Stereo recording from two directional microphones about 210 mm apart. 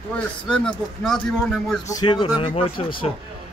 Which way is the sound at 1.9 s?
20° left (ahead or behind).